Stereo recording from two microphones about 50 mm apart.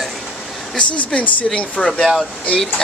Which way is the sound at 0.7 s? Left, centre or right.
Left.